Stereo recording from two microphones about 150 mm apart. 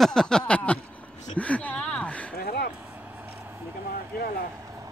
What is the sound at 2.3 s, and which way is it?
Speech, 90° left.